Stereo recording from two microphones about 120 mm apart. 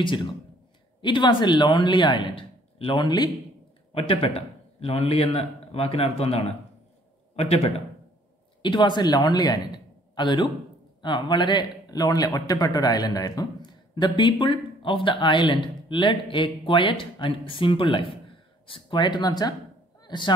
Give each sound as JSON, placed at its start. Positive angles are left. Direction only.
{"t": 0.0, "sound": "speech", "side_deg": 40}
{"t": 3.9, "sound": "a man's voice", "side_deg": 55}
{"t": 8.6, "sound": "a man's voice", "side_deg": 40}
{"t": 20.0, "sound": "a sound", "side_deg": 40}